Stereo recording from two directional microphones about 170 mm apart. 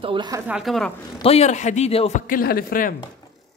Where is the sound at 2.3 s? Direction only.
60° left (ahead or behind).